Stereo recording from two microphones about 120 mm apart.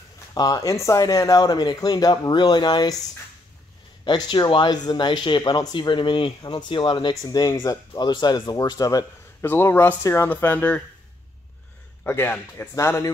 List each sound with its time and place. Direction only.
0.3 s speech: 30° left (ahead or behind)
4.0 s speech: 40° left (ahead or behind); by 10.8 s 15° left (ahead or behind)
12.0 s speech: 15° left (ahead or behind)